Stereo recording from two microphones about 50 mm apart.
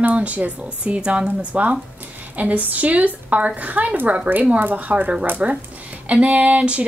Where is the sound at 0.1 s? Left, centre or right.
Right.